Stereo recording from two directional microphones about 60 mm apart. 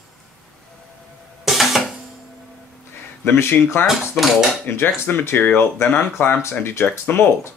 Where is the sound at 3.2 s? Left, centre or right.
Left.